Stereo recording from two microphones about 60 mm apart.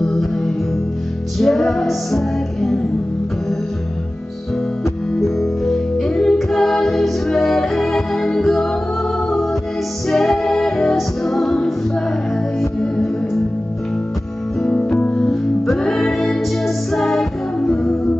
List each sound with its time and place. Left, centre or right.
0.0 s music: centre
1.4 s music: centre
5.2 s music: centre
14.6 s music: centre